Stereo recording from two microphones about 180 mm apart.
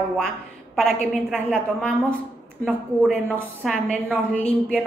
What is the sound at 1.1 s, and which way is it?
A woman's voice, centre (ahead or behind).